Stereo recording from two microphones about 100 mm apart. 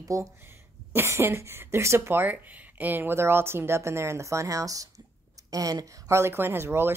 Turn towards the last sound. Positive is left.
turn(degrees=-25)  # may be behind; listen again after turning